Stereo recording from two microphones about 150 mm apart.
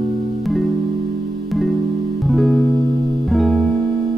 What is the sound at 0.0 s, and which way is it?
Music, centre (ahead or behind).